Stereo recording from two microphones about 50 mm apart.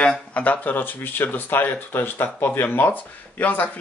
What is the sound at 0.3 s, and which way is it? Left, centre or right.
Speech, left.